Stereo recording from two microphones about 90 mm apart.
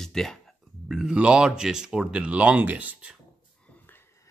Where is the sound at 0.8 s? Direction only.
5° right (ahead or behind).